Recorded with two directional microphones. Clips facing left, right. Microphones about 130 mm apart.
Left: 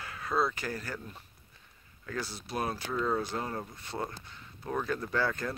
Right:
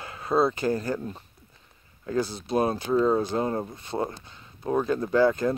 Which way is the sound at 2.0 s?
20° right (ahead or behind).